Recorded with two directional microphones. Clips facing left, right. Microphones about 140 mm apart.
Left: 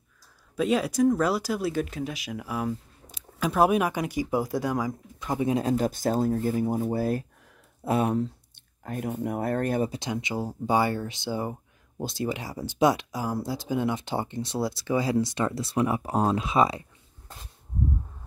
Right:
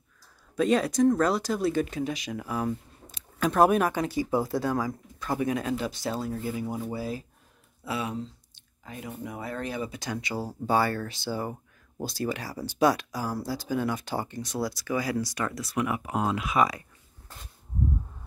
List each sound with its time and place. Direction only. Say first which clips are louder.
0.6 s speech: right 1 dB; 5° left (ahead or behind); by 6.8 s 45° left (ahead or behind)
6.9 s speech: left 6 dB; 55° left (ahead or behind)
9.8 s speech: left 2 dB; 25° left (ahead or behind)